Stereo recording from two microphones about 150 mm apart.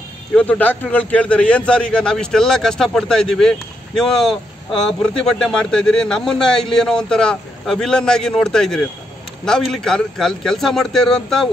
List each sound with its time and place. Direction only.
0.3 s a man's voice: 10° left (ahead or behind)